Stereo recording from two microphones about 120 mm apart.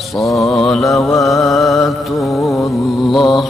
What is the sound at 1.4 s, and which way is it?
Music, centre (ahead or behind).